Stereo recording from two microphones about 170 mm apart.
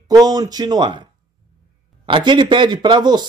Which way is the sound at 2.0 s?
30° right (ahead or behind).